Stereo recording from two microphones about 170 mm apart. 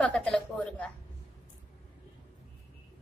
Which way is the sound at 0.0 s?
5° left (ahead or behind).